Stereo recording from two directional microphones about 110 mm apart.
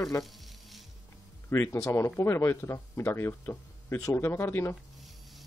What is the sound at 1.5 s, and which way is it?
Speech, 25° left (ahead or behind).